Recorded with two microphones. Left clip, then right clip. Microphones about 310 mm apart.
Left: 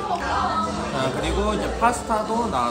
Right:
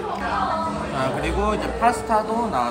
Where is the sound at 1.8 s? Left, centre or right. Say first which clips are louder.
Right 2 dB; centre.